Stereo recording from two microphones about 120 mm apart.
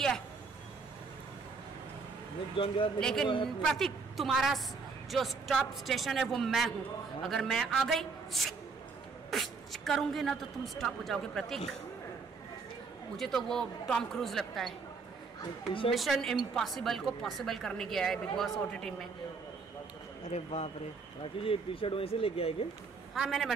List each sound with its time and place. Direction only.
2.5 s speech: 45° left (ahead or behind)
3.0 s a woman's voice: 5° left (ahead or behind)
13.1 s a woman's voice: 5° left (ahead or behind)
15.9 s a woman's voice: centre (ahead or behind)
20.2 s speech: 65° left (ahead or behind)
21.2 s speech: 50° left (ahead or behind)
23.1 s a woman's voice: centre (ahead or behind)